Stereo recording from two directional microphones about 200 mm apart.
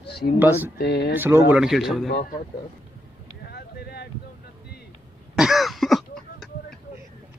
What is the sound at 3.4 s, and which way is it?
Boat, 55° left (ahead or behind).